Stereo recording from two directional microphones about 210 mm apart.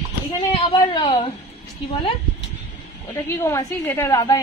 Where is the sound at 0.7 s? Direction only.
20° left (ahead or behind).